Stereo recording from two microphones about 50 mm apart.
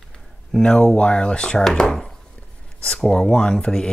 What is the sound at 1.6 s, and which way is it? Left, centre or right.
Speech, centre.